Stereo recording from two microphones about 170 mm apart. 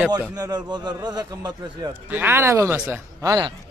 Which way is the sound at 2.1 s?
15° right (ahead or behind).